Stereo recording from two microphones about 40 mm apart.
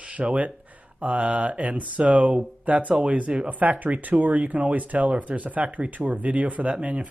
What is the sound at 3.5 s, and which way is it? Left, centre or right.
Speech, right.